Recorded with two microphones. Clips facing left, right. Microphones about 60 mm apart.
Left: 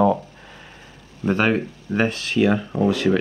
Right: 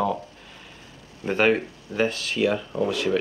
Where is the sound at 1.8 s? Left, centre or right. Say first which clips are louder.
Left 2 dB; left.